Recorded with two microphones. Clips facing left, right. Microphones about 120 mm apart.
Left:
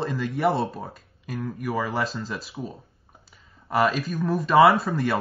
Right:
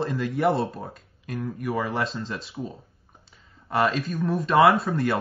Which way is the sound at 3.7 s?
Centre (ahead or behind).